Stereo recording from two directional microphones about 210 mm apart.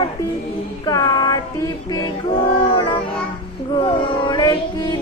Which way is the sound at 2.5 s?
20° left (ahead or behind).